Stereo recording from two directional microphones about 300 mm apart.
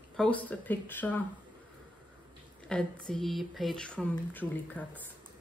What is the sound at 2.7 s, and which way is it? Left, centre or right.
Speech, centre.